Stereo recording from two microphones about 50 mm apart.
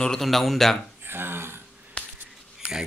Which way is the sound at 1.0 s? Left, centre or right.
Right.